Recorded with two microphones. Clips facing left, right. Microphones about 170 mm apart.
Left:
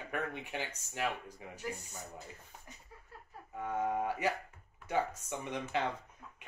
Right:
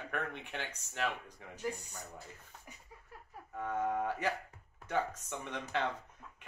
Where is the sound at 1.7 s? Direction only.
15° right (ahead or behind).